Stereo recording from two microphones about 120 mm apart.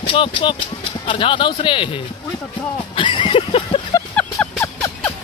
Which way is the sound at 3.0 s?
45° left (ahead or behind).